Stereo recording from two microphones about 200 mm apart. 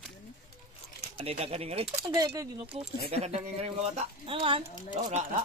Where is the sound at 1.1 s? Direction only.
30° right (ahead or behind).